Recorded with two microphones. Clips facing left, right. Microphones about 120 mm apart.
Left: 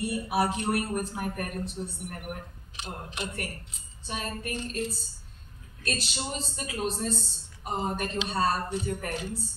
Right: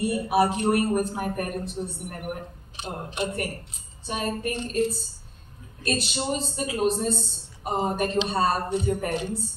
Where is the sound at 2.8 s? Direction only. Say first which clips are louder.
Right 7 dB; 40° right (ahead or behind).